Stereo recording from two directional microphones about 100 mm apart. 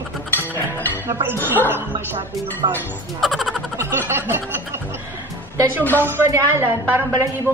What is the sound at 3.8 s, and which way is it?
Speech, 20° right (ahead or behind).